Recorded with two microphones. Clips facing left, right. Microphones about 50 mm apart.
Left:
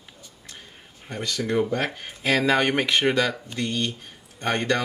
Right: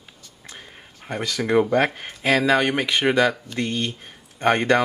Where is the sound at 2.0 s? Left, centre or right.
Centre.